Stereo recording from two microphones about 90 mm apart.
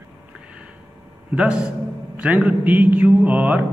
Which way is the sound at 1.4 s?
10° right (ahead or behind).